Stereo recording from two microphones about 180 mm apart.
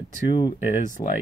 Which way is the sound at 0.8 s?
45° left (ahead or behind).